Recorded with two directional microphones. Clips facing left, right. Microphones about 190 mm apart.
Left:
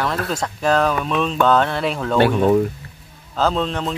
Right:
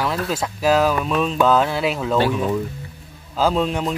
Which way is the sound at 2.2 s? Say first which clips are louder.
Left 10 dB; 60° left (ahead or behind).